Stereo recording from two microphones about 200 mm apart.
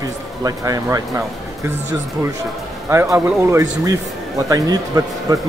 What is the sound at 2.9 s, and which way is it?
Speech, 10° right (ahead or behind).